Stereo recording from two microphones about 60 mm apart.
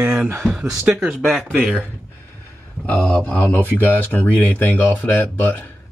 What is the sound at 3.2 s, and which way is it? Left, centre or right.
Speech, left.